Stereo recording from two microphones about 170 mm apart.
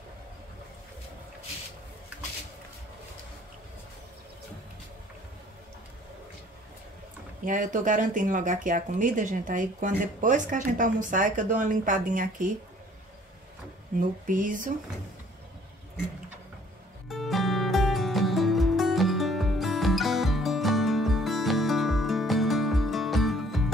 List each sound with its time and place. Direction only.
7.4 s speech: 50° right (ahead or behind)
13.9 s speech: 50° right (ahead or behind)
17.1 s music: centre (ahead or behind)